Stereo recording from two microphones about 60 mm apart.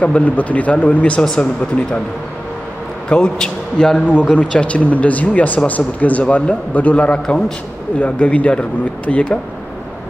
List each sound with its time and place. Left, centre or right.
0.0 s a man's voice: left
3.1 s a man's voice: centre
4.1 s a man's voice: left
8.0 s a man's voice: left